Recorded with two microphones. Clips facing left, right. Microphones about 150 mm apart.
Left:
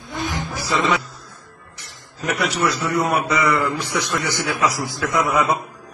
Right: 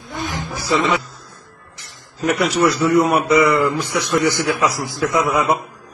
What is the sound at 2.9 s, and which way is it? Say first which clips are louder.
A man's voice: right 6 dB; 20° right (ahead or behind).